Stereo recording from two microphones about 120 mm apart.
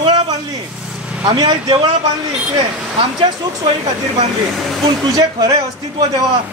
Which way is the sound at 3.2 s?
40° right (ahead or behind).